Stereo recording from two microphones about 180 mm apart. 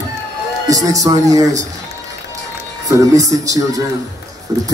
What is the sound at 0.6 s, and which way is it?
A man's voice, 20° right (ahead or behind).